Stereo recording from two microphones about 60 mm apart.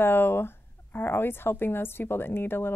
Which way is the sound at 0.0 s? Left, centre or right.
Left.